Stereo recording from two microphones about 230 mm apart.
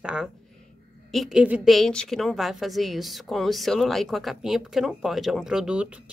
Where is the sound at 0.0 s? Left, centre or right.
Centre.